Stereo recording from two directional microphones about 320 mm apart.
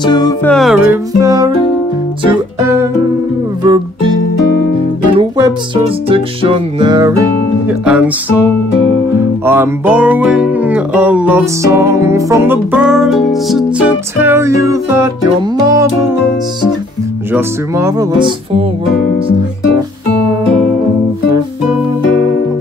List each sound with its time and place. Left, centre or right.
0.0 s music: centre
1.2 s music: centre
5.4 s music: centre
7.6 s speech: centre
9.4 s music: centre
15.6 s speech: centre
17.3 s speech: centre